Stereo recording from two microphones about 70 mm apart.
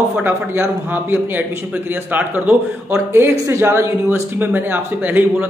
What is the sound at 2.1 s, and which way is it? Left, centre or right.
Speech, right.